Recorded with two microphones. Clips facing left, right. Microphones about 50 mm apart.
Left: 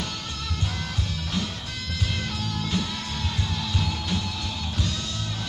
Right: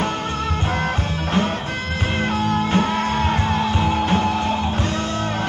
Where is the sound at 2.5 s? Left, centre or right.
Right.